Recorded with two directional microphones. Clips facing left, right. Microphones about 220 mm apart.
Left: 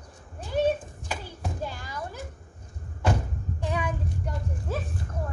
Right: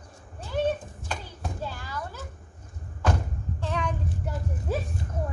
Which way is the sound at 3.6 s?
10° left (ahead or behind).